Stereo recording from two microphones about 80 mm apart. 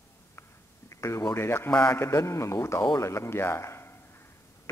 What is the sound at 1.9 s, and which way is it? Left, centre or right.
Speech, left.